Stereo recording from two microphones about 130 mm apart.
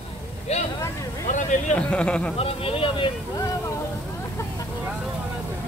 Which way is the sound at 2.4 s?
45° left (ahead or behind).